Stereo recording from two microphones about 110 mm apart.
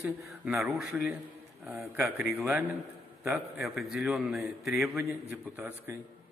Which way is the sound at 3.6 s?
Centre (ahead or behind).